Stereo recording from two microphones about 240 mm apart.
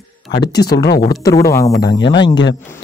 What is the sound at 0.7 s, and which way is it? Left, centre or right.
Speech, left.